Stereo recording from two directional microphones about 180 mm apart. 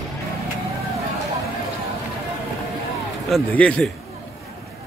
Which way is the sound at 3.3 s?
5° left (ahead or behind).